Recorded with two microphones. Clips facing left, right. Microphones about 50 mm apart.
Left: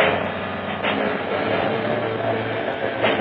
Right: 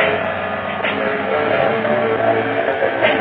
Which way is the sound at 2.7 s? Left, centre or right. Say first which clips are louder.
Right 4 dB; right.